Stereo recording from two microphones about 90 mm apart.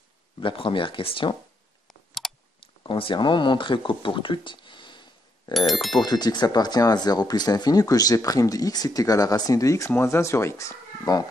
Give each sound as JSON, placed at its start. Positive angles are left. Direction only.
{"t": 0.4, "sound": "speech", "side_deg": 70}
{"t": 2.2, "sound": "clicking", "side_deg": 5}
{"t": 2.8, "sound": "speech", "side_deg": 70}
{"t": 5.7, "sound": "speech", "side_deg": 0}
{"t": 5.9, "sound": "speech", "side_deg": 50}
{"t": 11.1, "sound": "speech", "side_deg": 45}